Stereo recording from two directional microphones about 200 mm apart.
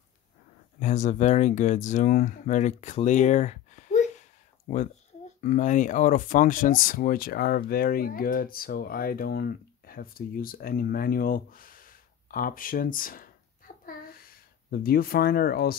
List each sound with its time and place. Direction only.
0.7 s speech: 35° left (ahead or behind)
5.4 s speech: 40° left (ahead or behind)
13.8 s a sound: 50° left (ahead or behind)